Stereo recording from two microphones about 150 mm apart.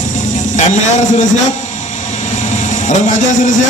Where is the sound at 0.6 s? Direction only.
55° left (ahead or behind).